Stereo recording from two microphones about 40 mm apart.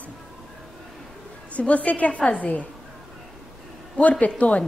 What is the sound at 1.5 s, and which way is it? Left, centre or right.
A woman's voice, left.